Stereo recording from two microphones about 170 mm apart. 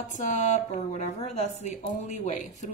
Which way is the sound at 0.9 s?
40° left (ahead or behind).